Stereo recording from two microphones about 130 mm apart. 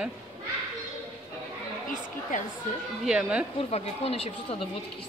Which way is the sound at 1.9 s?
80° left.